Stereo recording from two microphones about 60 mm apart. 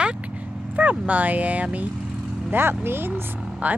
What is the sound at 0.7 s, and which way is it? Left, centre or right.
Speech, right.